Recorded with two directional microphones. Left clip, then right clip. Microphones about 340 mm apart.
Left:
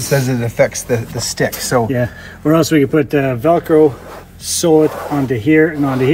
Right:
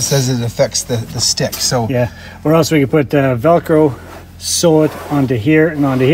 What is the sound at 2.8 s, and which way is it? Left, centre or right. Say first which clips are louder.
Speech: right 1 dB; right.